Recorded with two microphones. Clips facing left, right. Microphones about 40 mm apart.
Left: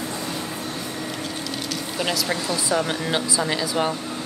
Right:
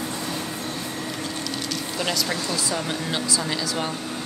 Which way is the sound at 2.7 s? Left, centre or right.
Centre.